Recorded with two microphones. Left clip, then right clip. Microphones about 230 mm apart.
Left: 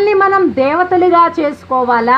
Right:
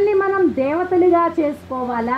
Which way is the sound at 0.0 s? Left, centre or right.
Left.